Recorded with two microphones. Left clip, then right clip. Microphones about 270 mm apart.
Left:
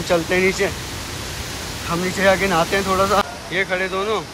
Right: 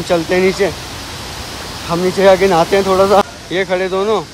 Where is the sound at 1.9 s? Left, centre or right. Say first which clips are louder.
Right 7 dB; centre.